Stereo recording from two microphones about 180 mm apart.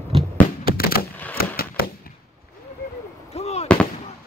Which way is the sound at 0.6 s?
55° left (ahead or behind).